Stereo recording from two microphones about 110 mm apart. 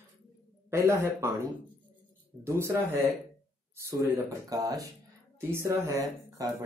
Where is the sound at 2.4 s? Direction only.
25° right (ahead or behind).